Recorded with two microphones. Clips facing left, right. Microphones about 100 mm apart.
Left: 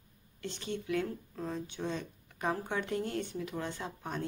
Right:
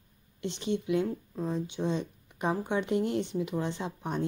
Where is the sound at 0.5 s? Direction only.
20° right (ahead or behind).